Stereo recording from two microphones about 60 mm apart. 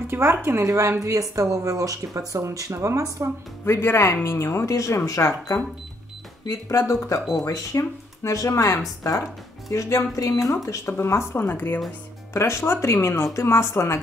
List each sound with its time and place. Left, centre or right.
0.1 s speech: right
3.6 s speech: left
7.4 s speech: left
9.7 s speech: left
10.1 s speech: left
10.5 s speech: left
10.9 s speech: left
12.4 s speech: left